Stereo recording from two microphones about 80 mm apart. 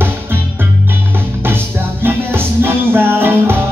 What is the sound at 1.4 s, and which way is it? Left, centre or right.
Music, right.